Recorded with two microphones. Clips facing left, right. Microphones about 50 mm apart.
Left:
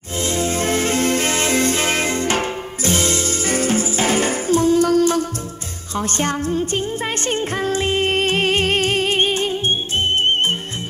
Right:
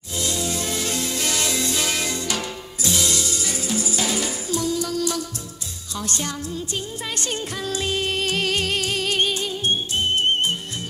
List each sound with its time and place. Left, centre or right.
0.2 s music: left